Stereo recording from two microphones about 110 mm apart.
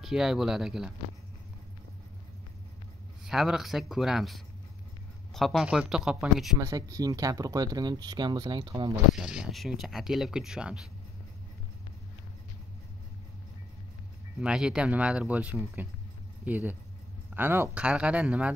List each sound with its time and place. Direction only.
0.0 s speech: 5° right (ahead or behind)
3.3 s speech: 5° right (ahead or behind)
6.6 s speech: 30° right (ahead or behind)
9.2 s speech: 5° right (ahead or behind)
14.4 s speech: 5° right (ahead or behind)